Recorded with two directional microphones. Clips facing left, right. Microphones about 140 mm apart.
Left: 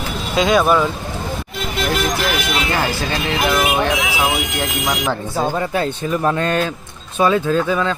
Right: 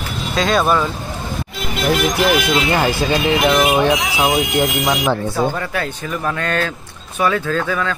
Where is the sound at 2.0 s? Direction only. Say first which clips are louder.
Right 4 dB; 15° right (ahead or behind).